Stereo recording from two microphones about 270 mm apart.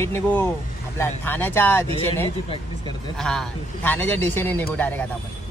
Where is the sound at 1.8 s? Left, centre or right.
Right.